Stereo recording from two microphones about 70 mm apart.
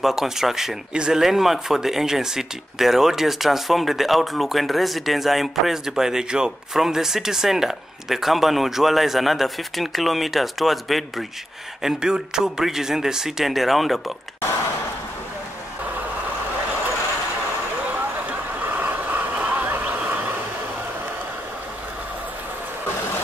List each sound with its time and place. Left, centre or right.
0.0 s speech: centre
17.9 s vehicle: right
19.9 s a sound: right